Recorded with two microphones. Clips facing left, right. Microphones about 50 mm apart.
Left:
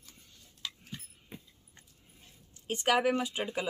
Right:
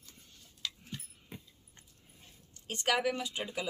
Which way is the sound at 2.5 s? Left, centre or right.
Centre.